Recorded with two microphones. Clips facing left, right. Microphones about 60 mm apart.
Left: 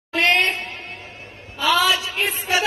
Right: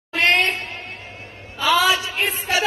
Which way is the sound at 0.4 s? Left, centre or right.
Centre.